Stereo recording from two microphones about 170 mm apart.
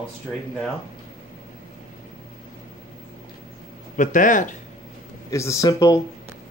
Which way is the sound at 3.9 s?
50° left (ahead or behind).